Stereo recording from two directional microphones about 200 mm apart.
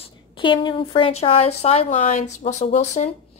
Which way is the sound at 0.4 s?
25° left (ahead or behind).